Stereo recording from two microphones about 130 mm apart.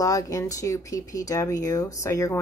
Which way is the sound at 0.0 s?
25° left (ahead or behind).